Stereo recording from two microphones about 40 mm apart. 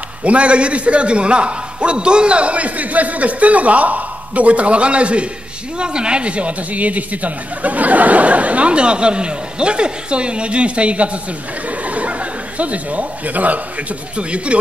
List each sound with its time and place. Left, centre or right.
0.2 s a man's voice: right
11.8 s chuckle: right
14.1 s a man's voice: right